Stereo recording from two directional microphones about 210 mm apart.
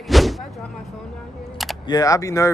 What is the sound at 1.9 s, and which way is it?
Speech, 15° left (ahead or behind).